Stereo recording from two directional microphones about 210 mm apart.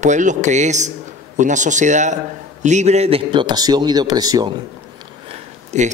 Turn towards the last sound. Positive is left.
turn(degrees=-35)  # may be behind; listen again after turning